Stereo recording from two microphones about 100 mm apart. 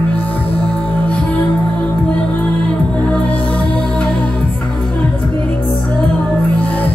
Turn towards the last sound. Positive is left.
turn(degrees=15)  # may be behind; listen again after turning